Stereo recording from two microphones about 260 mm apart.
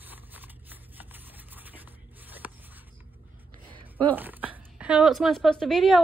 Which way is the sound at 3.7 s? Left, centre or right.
Centre.